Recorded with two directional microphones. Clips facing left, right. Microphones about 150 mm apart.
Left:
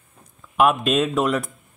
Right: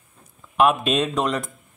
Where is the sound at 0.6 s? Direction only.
Centre (ahead or behind).